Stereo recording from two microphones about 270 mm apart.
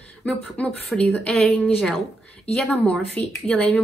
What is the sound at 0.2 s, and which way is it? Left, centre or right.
Speech, centre.